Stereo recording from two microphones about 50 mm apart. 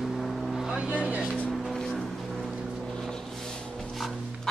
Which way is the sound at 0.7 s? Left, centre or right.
Right.